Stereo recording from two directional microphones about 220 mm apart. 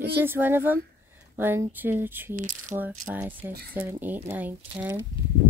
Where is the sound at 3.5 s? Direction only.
45° right (ahead or behind).